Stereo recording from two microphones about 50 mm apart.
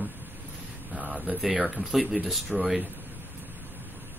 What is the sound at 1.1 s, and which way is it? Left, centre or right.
Speech, right.